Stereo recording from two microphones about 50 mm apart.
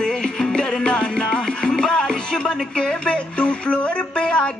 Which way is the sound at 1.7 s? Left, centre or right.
Centre.